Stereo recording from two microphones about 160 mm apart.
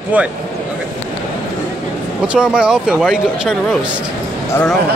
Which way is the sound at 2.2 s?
5° right (ahead or behind).